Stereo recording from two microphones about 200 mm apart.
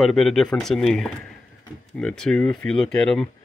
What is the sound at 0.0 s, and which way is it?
A man's voice, centre (ahead or behind).